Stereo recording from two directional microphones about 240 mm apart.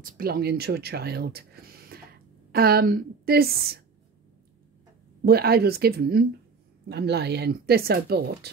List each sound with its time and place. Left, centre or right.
0.0 s speech: right
5.2 s speech: right